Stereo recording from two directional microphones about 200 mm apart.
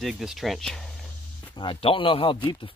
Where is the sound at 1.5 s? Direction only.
25° left (ahead or behind).